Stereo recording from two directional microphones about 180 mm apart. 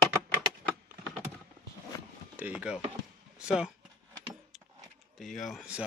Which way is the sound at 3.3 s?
5° right (ahead or behind).